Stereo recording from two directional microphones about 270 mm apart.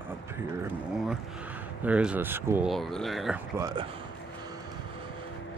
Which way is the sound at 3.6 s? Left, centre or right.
Centre.